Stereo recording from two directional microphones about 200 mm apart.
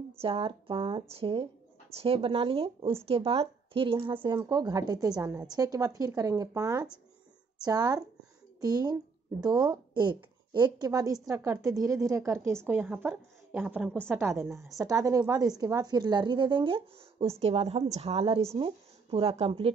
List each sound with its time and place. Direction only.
0.2 s a woman's voice: 25° right (ahead or behind)